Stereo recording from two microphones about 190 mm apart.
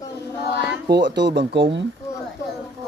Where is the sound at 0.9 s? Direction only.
65° right (ahead or behind).